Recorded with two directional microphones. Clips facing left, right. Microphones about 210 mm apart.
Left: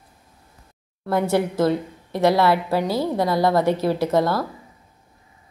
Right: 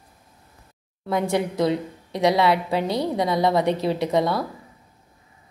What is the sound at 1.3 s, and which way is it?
A woman's voice, centre (ahead or behind).